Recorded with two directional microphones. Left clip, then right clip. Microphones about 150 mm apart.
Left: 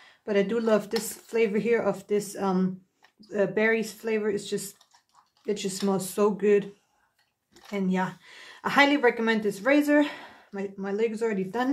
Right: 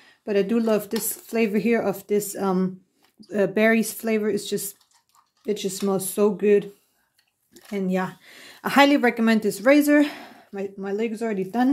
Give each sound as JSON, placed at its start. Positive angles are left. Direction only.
{"t": 0.0, "sound": "speech", "side_deg": -30}
{"t": 7.7, "sound": "speech", "side_deg": -35}